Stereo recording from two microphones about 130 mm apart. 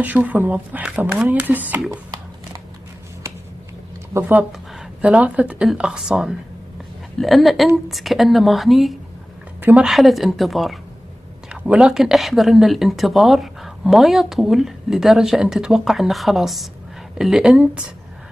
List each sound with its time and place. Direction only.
0.0 s speech: 10° right (ahead or behind)
1.9 s a sound: 25° right (ahead or behind)
4.2 s a woman's voice: 10° right (ahead or behind)
9.6 s a woman's voice: 15° right (ahead or behind)
9.8 s a woman's voice: centre (ahead or behind)